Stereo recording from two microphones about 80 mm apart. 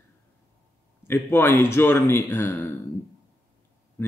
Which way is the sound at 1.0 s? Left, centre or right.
Left.